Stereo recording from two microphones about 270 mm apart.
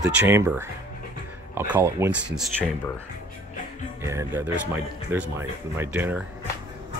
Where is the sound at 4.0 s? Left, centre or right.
Centre.